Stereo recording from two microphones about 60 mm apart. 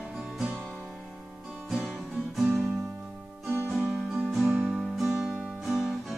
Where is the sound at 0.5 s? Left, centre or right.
Centre.